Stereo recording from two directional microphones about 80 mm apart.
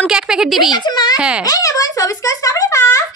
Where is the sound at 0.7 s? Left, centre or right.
Left.